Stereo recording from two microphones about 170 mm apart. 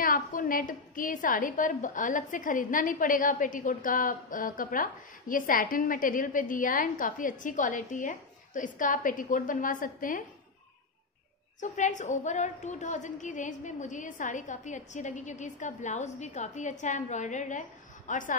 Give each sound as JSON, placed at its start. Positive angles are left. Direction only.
{"t": 0.0, "sound": "a woman's voice", "side_deg": 50}
{"t": 11.6, "sound": "a woman's voice", "side_deg": 45}